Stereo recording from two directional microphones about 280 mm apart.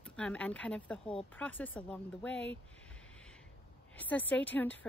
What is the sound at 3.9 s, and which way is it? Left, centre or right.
Speech, centre.